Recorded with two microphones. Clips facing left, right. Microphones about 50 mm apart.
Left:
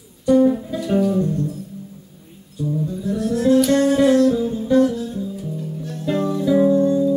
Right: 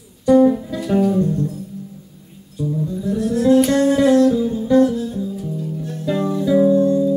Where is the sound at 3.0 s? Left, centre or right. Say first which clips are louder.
Right 2 dB; right.